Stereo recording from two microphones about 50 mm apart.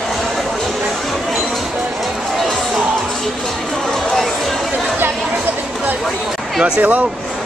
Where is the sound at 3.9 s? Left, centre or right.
Centre.